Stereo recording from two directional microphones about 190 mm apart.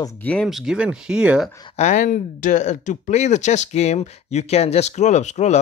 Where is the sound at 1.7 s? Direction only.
40° left (ahead or behind).